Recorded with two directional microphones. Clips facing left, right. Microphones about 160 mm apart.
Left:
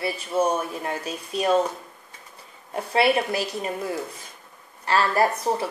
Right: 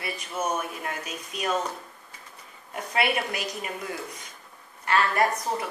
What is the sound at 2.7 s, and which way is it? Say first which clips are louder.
A woman's voice: left 6 dB; 30° left (ahead or behind).